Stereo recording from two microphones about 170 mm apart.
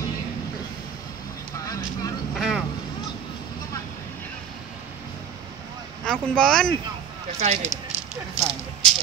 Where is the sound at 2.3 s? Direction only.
5° right (ahead or behind).